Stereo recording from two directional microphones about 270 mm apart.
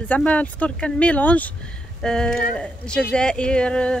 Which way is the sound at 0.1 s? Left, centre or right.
Centre.